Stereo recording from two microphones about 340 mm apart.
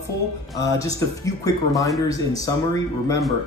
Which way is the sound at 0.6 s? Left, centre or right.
Centre.